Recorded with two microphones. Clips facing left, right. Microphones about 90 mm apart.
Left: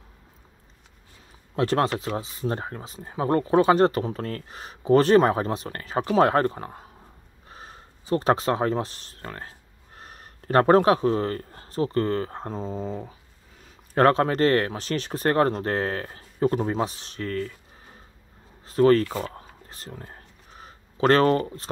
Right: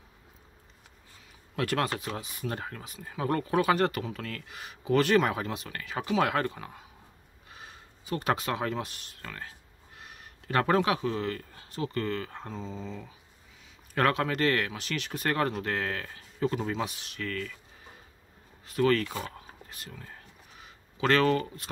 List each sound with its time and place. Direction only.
1.5 s speech: 30° left (ahead or behind)
18.7 s speech: 35° left (ahead or behind)
19.1 s a sound: 30° left (ahead or behind)